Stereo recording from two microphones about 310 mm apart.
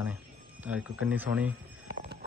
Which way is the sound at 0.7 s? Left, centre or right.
Centre.